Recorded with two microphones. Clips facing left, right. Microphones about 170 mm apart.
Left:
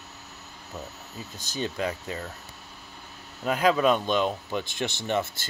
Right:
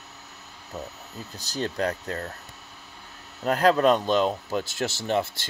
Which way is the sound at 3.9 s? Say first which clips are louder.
Right 2 dB; 35° right (ahead or behind).